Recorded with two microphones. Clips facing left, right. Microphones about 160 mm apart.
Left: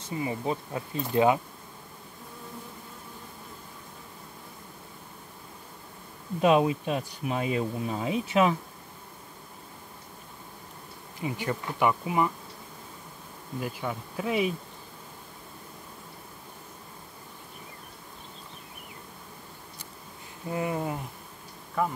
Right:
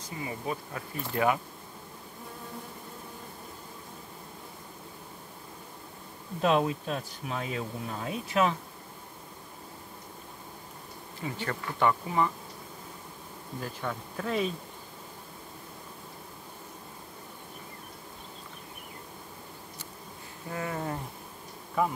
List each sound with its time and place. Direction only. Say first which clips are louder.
0.0 s speech: left 5 dB; 25° left (ahead or behind)
6.4 s speech: left 4 dB; 10° left (ahead or behind)
11.1 s speech: left 3 dB; 15° left (ahead or behind)
13.6 s speech: left 3 dB; 10° left (ahead or behind)
20.4 s speech: left 4 dB; 20° left (ahead or behind)
21.8 s speech: even; 5° right (ahead or behind)